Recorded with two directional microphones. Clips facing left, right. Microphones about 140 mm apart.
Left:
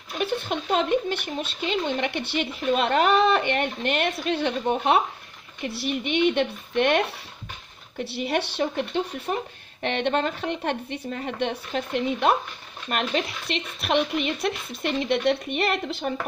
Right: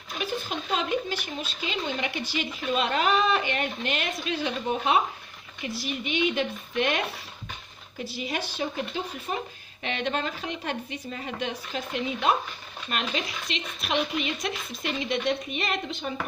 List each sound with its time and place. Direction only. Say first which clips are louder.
0.2 s speech: left 5 dB; 60° left (ahead or behind)
8.0 s speech: left 6 dB; 65° left (ahead or behind)
9.8 s speech: left 5 dB; 55° left (ahead or behind)